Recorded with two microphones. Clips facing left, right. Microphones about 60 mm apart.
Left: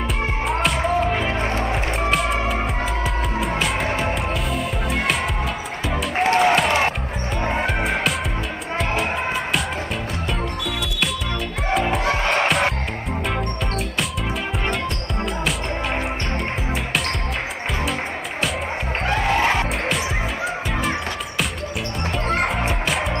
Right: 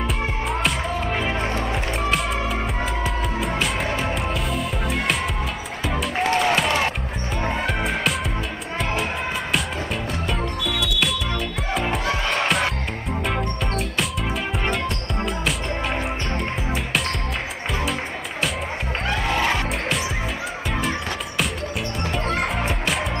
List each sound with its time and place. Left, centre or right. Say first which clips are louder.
0.5 s music: left 5 dB; centre
1.5 s music: left 2 dB; centre
2.0 s music: left 3 dB; centre
6.2 s music: left 4 dB; centre
7.6 s music: left 2 dB; centre
11.7 s music: left 4 dB; centre
19.2 s music: left 3 dB; left
22.6 s music: left 1 dB; centre